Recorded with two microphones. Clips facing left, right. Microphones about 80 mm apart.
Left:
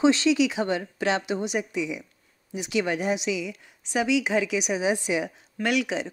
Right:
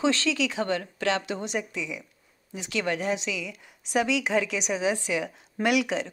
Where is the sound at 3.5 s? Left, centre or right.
Centre.